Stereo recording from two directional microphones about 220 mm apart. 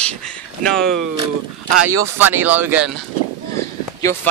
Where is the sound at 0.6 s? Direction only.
Centre (ahead or behind).